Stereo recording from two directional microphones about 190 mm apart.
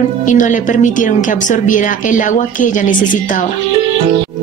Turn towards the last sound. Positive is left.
turn(degrees=45)  # may be behind; listen again after turning